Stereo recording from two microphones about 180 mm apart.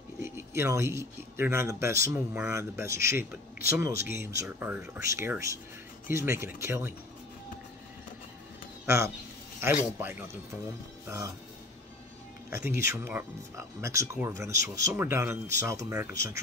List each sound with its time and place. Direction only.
0.2 s speech: 15° right (ahead or behind)
8.8 s speech: 15° right (ahead or behind)
12.4 s speech: 15° right (ahead or behind)